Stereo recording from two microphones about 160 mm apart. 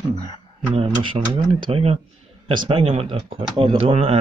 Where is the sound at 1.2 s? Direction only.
30° right (ahead or behind).